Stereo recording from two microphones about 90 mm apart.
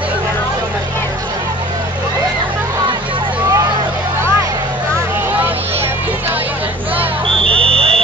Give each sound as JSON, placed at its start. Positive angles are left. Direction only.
{"t": 7.6, "sound": "vehicle", "side_deg": -90}